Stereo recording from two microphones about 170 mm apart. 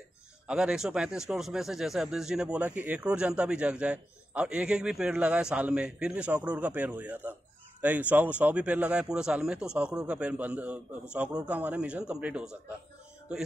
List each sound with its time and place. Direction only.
0.5 s a man's voice: 5° right (ahead or behind)